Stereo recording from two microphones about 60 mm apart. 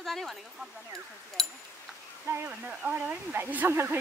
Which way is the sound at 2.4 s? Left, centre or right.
Right.